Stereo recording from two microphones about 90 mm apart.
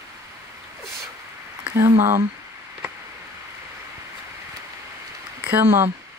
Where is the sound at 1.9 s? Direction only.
30° right (ahead or behind).